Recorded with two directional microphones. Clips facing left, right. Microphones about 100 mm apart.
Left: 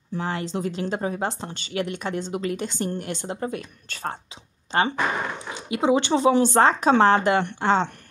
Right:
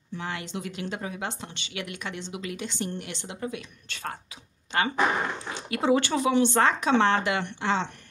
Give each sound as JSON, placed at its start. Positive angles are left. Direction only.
{"t": 0.1, "sound": "speech", "side_deg": 35}
{"t": 5.7, "sound": "speech", "side_deg": 20}
{"t": 6.2, "sound": "speech", "side_deg": 35}